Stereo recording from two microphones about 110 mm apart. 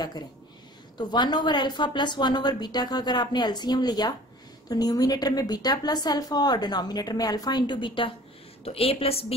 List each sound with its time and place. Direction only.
0.9 s a woman's voice: 40° left (ahead or behind)
8.6 s a woman's voice: 65° left (ahead or behind)